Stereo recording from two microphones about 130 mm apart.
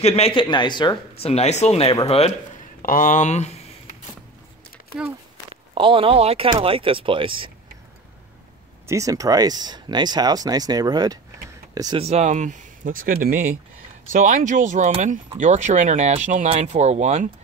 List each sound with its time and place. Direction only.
0.0 s speech: 55° left (ahead or behind); by 0.9 s 35° left (ahead or behind)
1.2 s speech: 55° left (ahead or behind)
2.8 s speech: 90° left; by 3.5 s 60° left (ahead or behind)
5.5 s speech: 40° right (ahead or behind)
8.8 s speech: 25° right (ahead or behind)
12.0 s speech: 55° right (ahead or behind)